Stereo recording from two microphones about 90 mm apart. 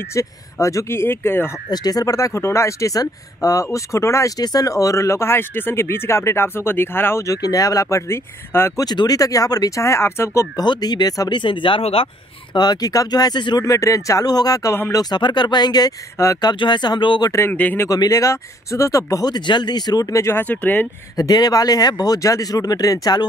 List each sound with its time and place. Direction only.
0.1 s speech: 35° left (ahead or behind)
1.7 s speech: 45° left (ahead or behind); by 7.3 s 30° left (ahead or behind)
7.4 s speech: 40° left (ahead or behind)
8.7 s speech: 45° left (ahead or behind)
10.6 s speech: 50° left (ahead or behind)
11.3 s speech: 65° left (ahead or behind); by 12.1 s 80° left
12.5 s speech: 45° left (ahead or behind)
13.7 s speech: 35° left (ahead or behind)
16.2 s speech: 35° left (ahead or behind)
16.5 s speech: 60° left (ahead or behind)
17.5 s speech: 20° left (ahead or behind)
17.8 s speech: 45° left (ahead or behind); by 20.9 s 20° left (ahead or behind)
21.2 s speech: 45° left (ahead or behind)